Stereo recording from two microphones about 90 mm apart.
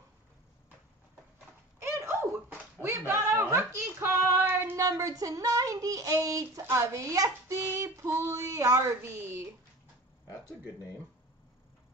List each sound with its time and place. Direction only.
1.8 s a sound: 30° right (ahead or behind)
2.8 s female singing: 25° right (ahead or behind)
4.7 s speech: 40° right (ahead or behind)